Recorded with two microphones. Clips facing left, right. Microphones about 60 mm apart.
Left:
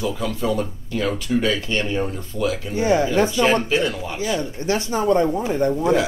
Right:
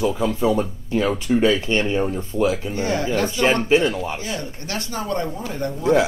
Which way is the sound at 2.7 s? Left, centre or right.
Centre.